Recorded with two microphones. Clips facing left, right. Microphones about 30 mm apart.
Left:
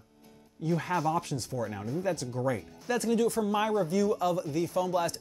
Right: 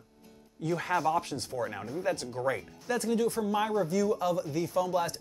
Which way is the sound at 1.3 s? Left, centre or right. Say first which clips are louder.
Even; right.